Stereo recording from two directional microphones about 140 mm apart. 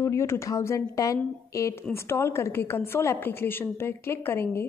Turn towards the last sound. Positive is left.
turn(degrees=15)  # may be behind; listen again after turning